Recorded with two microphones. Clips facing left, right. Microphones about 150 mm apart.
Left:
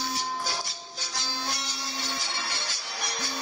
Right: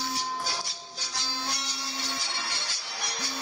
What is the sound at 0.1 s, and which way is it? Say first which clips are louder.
Music: left 1 dB; 50° left (ahead or behind).